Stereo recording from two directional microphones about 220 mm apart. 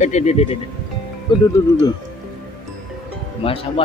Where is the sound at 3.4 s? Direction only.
25° left (ahead or behind).